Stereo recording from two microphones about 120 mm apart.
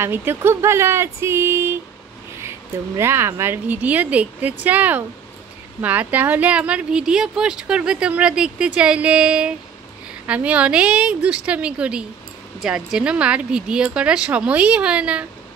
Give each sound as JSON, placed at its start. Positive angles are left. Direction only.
{"t": 0.0, "sound": "speech", "side_deg": -20}
{"t": 3.0, "sound": "speech", "side_deg": -20}